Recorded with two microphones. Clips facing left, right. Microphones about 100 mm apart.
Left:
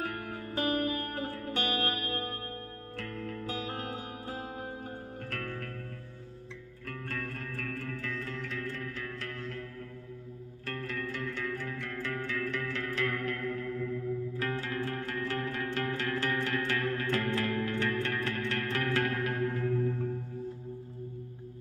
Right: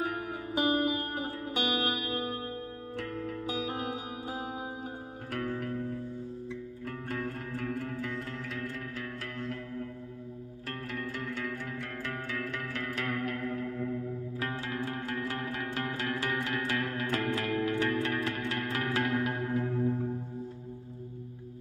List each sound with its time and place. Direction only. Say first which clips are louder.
0.0 s music: right 3 dB; 15° right (ahead or behind)
7.1 s music: right 3 dB; 15° right (ahead or behind)
8.3 s music: even; 25° right (ahead or behind)
11.4 s music: left 1 dB; 15° right (ahead or behind)